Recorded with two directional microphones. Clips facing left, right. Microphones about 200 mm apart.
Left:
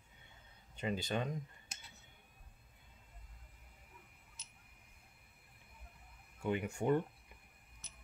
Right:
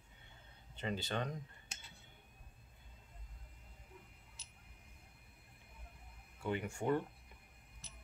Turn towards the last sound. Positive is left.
turn(degrees=15)  # may be behind; listen again after turning